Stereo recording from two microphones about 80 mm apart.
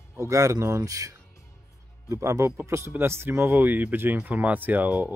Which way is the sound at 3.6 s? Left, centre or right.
Right.